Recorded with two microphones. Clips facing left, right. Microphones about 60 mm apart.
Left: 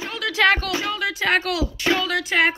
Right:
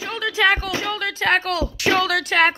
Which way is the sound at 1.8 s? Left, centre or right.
Right.